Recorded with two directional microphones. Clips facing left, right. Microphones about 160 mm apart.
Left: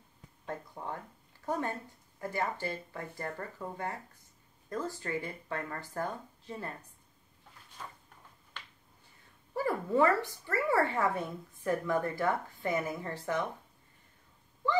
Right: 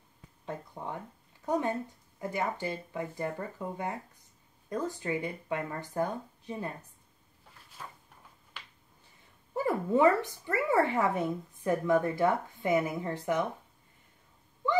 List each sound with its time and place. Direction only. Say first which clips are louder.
1.4 s speech: right 4 dB; 15° right (ahead or behind)
7.8 s a sound: even; 5° right (ahead or behind)
9.6 s speech: right 2 dB; 20° right (ahead or behind)